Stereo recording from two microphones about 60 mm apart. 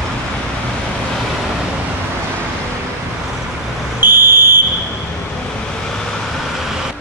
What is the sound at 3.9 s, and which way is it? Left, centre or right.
Smoke detector, right.